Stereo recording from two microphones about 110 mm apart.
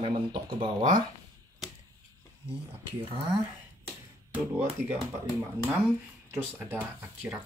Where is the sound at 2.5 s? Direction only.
55° right (ahead or behind).